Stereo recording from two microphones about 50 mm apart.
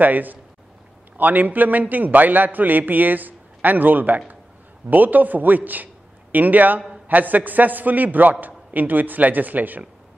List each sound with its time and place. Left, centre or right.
0.0 s a man's voice: right